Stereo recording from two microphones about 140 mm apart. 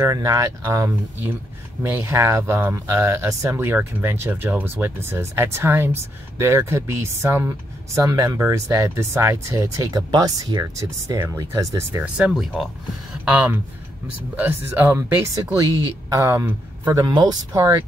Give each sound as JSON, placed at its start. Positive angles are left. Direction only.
{"t": 0.0, "sound": "speech", "side_deg": -25}
{"t": 12.0, "sound": "speech", "side_deg": -5}
{"t": 17.0, "sound": "speech", "side_deg": -30}